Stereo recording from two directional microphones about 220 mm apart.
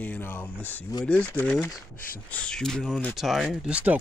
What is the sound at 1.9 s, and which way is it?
Speech, 40° left (ahead or behind).